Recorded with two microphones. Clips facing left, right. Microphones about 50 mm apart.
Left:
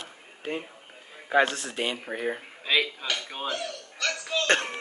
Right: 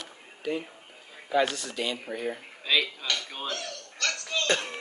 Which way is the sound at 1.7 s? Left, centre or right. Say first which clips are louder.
Left 1 dB; left.